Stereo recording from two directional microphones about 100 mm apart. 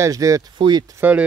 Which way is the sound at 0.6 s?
50° right (ahead or behind).